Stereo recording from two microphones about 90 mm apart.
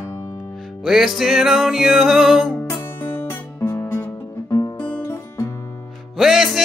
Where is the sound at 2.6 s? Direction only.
30° left (ahead or behind).